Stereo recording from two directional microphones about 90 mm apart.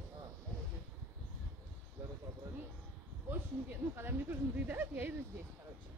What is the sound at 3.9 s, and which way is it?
Speech, 25° right (ahead or behind).